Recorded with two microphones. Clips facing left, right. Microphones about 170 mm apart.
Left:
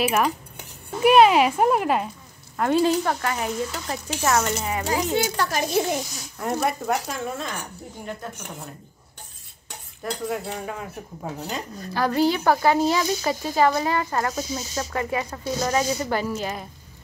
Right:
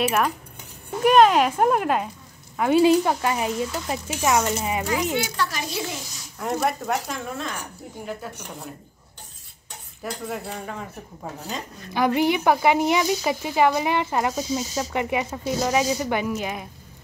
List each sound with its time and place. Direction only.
0.0 s speech: centre (ahead or behind)
5.1 s speech: 45° left (ahead or behind)
6.3 s speech: centre (ahead or behind)
10.0 s a man's voice: centre (ahead or behind)
11.9 s speech: 15° right (ahead or behind)